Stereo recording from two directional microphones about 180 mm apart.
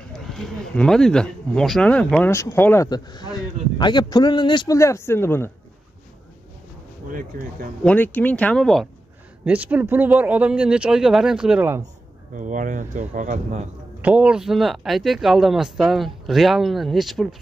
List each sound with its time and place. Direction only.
0.3 s speech: 5° left (ahead or behind)
7.1 s speech: 50° right (ahead or behind)
7.8 s speech: 10° left (ahead or behind)
9.4 s speech: 10° right (ahead or behind)
12.4 s speech: 45° right (ahead or behind)
14.0 s speech: 5° right (ahead or behind)